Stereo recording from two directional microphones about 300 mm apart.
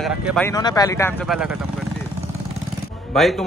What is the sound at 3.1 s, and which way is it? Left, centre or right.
Speech, centre.